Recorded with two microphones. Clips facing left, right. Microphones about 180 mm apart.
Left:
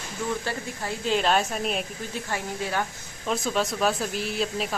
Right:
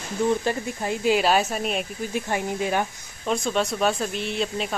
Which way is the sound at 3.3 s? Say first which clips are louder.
Right 2 dB; centre (ahead or behind).